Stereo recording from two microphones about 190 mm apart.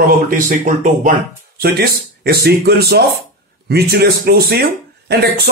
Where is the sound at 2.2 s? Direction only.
55° right (ahead or behind).